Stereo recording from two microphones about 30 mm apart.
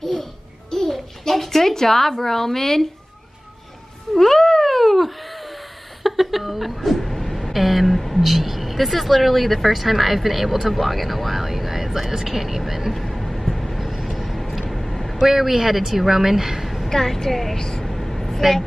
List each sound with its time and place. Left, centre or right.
0.0 s music: centre
1.3 s speech: centre
4.1 s cat: centre
6.0 s a sound: centre
8.3 s speech: centre
12.9 s vehicle: centre
13.8 s vehicle: centre
14.8 s a sound: centre
15.2 s speech: centre
16.6 s a sound: centre
16.9 s a woman's voice: centre
17.9 s vehicle: centre